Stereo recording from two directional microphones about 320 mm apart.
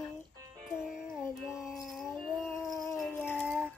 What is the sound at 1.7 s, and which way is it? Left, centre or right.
Dog, centre.